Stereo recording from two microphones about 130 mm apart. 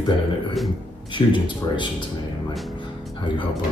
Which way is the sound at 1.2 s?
35° left (ahead or behind).